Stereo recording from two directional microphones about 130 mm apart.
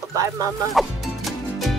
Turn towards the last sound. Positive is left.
turn(degrees=0)  # may be behind; listen again after turning